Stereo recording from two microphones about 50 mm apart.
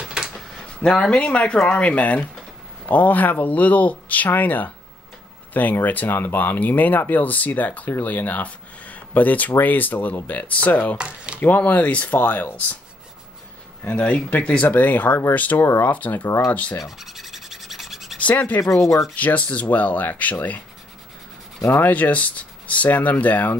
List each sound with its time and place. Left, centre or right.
0.0 s a sound: centre
0.7 s speech: centre; by 11.0 s left
11.0 s speech: right
11.3 s speech: left
13.9 s speech: left
15.5 s speech: left
15.9 s speech: left
16.3 s speech: left
16.8 s rub: centre
18.3 s speech: left
18.6 s speech: left
19.1 s speech: left
21.5 s rub: left
21.8 s speech: left